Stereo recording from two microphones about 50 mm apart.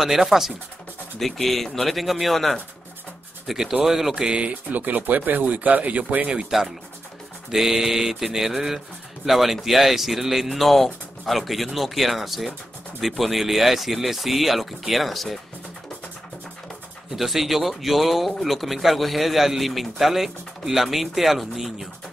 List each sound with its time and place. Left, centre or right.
0.0 s speech: centre; by 6.4 s right
7.5 s speech: centre
17.1 s speech: centre